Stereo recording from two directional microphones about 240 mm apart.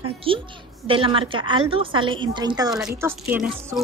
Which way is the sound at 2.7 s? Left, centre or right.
Centre.